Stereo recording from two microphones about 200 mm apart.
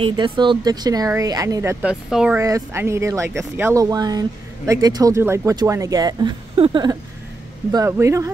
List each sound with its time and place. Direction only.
0.0 s speech: 25° right (ahead or behind); by 2.3 s 5° right (ahead or behind)
2.3 s speech: 15° right (ahead or behind)